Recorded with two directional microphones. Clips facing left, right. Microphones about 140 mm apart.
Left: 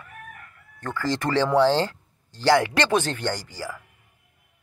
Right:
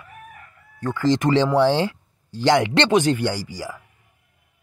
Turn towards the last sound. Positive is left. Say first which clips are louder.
# right 3 dB
turn(degrees=-15)  # may be behind; listen again after turning